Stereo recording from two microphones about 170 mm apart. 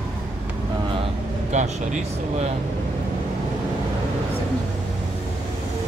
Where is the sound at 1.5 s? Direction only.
45° right (ahead or behind).